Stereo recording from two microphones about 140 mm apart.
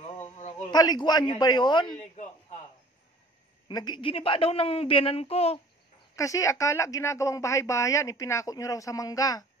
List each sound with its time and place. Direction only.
0.7 s a woman's voice: 30° left (ahead or behind)
3.6 s a woman's voice: 30° left (ahead or behind)
6.1 s speech: 25° left (ahead or behind)